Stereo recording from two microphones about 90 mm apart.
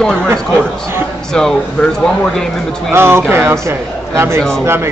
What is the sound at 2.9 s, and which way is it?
Speech, 25° right (ahead or behind).